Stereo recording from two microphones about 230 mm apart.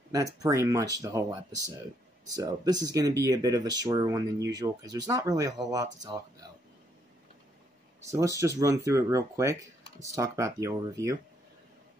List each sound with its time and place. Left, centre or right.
0.1 s speech: centre
8.0 s speech: centre